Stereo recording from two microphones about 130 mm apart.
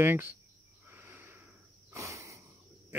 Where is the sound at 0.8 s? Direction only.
15° right (ahead or behind).